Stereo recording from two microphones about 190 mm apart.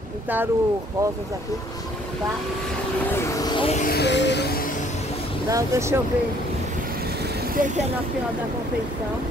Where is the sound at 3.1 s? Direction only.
15° left (ahead or behind).